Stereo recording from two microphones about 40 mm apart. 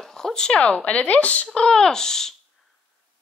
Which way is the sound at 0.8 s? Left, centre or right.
Left.